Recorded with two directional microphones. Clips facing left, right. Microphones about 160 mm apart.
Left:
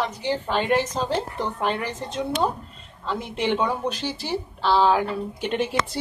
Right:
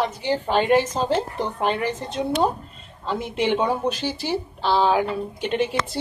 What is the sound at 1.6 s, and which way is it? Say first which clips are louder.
A woman's voice: right 4 dB; centre (ahead or behind).